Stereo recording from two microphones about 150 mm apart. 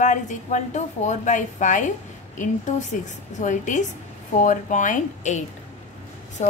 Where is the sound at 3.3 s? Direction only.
55° left (ahead or behind).